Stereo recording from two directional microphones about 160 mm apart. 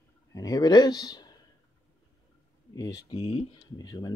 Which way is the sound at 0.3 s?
25° left (ahead or behind).